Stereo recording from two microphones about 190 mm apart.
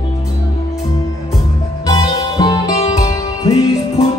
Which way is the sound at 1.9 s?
20° left (ahead or behind).